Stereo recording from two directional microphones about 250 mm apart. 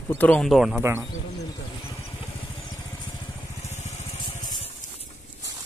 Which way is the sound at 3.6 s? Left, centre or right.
Left.